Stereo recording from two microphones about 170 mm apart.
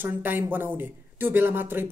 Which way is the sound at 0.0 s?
10° right (ahead or behind).